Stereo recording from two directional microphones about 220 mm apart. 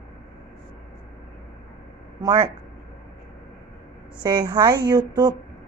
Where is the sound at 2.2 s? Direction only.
15° right (ahead or behind).